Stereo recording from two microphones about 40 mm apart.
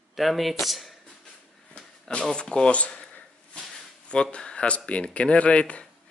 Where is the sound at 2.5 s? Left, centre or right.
Left.